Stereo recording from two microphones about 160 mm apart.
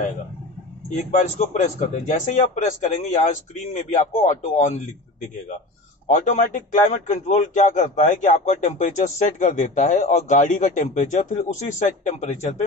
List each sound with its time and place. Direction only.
0.8 s speech: 50° left (ahead or behind)
6.0 s speech: 50° left (ahead or behind)